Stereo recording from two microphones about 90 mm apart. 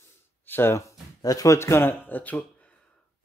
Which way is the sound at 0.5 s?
30° left (ahead or behind).